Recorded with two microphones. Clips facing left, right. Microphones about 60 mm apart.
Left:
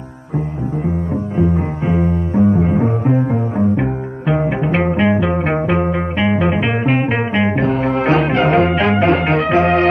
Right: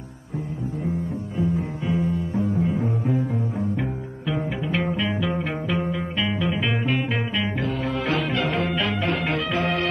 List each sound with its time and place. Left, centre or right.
1.3 s music: left